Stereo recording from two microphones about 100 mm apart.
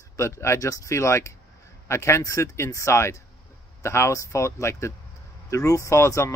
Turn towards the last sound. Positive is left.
turn(degrees=30)  # may be behind; listen again after turning